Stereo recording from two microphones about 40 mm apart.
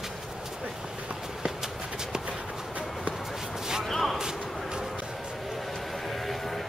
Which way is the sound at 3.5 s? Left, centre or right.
Centre.